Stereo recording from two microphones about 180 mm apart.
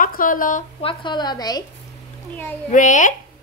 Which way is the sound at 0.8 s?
30° left (ahead or behind).